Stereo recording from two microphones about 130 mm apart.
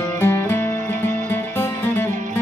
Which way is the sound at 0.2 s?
15° left (ahead or behind).